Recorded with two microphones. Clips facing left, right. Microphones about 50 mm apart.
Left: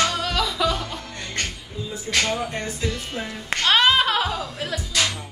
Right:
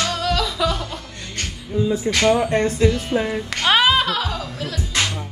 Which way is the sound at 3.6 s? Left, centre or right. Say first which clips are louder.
Right 2 dB; centre.